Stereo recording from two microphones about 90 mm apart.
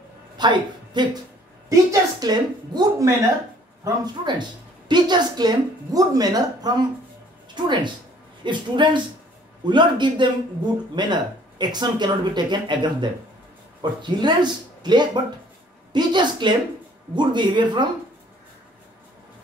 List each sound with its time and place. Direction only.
0.4 s a woman's voice: 55° right (ahead or behind)
1.7 s a woman's voice: 40° right (ahead or behind)
3.0 s speech: 35° right (ahead or behind)
3.8 s a woman's voice: 50° right (ahead or behind)
7.5 s speech: 55° right (ahead or behind)